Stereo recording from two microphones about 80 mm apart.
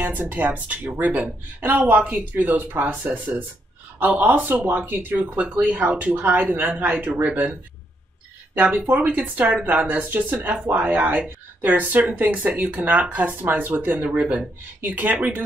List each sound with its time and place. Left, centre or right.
0.0 s speech: right
8.5 s speech: right